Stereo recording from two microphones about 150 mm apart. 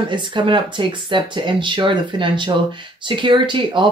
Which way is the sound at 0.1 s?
30° right (ahead or behind).